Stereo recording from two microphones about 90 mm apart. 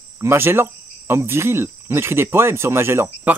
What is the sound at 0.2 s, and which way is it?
Speech, 30° right (ahead or behind).